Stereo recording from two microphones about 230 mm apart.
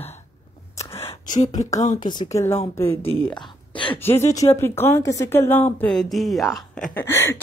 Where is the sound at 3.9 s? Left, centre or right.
Centre.